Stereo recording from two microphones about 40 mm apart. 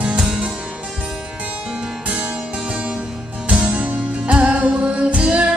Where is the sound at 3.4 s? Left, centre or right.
Right.